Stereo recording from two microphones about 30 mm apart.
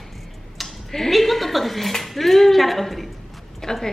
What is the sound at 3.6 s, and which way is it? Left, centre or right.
Speech, centre.